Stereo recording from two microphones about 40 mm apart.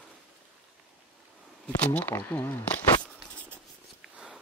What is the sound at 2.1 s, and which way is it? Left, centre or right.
Speech, left.